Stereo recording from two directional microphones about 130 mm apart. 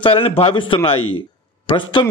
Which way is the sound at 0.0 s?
45° left (ahead or behind).